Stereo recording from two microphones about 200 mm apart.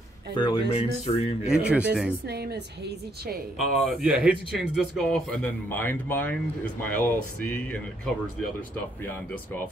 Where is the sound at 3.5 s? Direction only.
Centre (ahead or behind).